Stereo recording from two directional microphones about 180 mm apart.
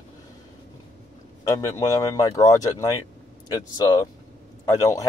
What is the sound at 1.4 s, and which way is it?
Speech, 20° left (ahead or behind).